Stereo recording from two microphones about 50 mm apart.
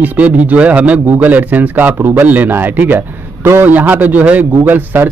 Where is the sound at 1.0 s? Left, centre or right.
Right.